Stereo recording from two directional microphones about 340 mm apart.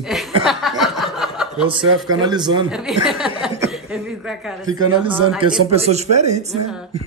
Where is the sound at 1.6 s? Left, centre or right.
Centre.